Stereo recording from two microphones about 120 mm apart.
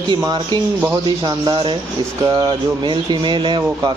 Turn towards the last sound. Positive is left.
turn(degrees=-40)  # may be behind; listen again after turning